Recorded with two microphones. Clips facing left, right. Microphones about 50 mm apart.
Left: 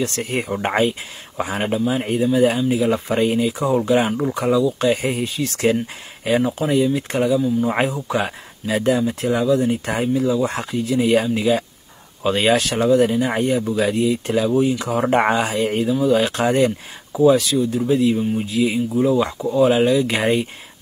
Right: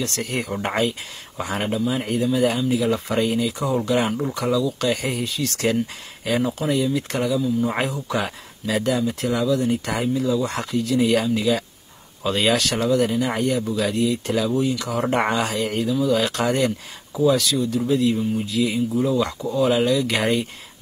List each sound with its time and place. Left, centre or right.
0.0 s speech: left
4.0 s speech: centre
12.4 s speech: centre